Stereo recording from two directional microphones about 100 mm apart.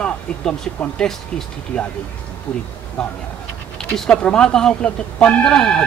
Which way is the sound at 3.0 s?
10° left (ahead or behind).